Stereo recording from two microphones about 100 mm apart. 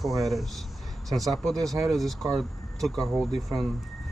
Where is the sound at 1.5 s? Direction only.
35° right (ahead or behind).